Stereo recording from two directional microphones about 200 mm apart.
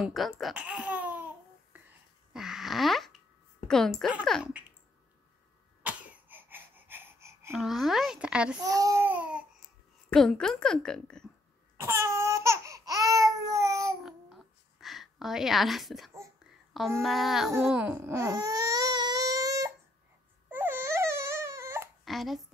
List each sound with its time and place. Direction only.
0.0 s babbling: centre (ahead or behind)
2.3 s a sound: centre (ahead or behind)
3.6 s a woman's voice: centre (ahead or behind)
5.8 s cough: 5° right (ahead or behind)
7.5 s a woman's voice: centre (ahead or behind)
8.6 s a woman's voice: 15° right (ahead or behind); by 11.2 s 5° left (ahead or behind)
11.7 s babbling: 15° right (ahead or behind)
14.0 s a sound: centre (ahead or behind)
17.0 s a woman's voice: centre (ahead or behind)
17.5 s baby cry: 10° right (ahead or behind)
22.0 s babbling: centre (ahead or behind)